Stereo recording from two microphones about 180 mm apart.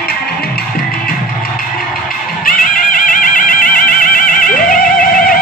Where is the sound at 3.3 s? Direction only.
50° left (ahead or behind).